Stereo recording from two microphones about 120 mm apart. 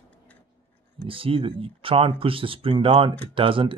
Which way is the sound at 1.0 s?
50° right (ahead or behind).